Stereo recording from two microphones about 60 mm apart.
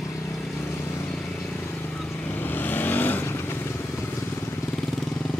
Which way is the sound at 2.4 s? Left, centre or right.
Left.